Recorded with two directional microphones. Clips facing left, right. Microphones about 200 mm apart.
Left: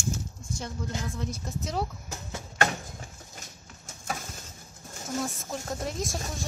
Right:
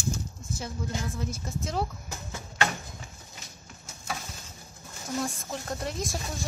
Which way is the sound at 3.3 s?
50° left (ahead or behind).